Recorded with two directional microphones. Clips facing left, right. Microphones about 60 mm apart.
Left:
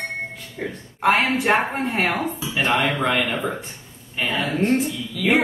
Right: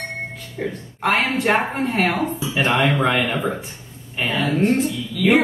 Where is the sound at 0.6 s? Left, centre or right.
Centre.